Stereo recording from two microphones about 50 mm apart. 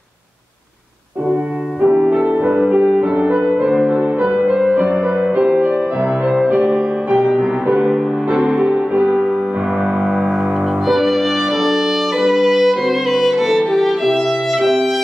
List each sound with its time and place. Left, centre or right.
1.3 s french horn: right
2.2 s music: right
2.5 s music: centre
3.7 s music: centre
5.3 s music: centre